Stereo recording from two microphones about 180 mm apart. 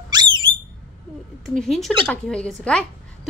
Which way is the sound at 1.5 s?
Centre (ahead or behind).